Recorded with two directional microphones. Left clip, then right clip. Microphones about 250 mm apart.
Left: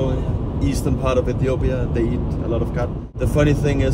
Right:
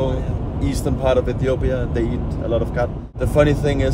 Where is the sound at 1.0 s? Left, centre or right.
Centre.